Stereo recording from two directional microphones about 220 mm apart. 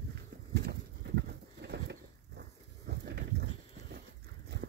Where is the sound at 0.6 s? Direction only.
50° right (ahead or behind).